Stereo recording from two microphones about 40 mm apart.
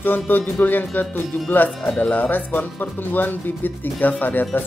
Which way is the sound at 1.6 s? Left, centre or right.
Left.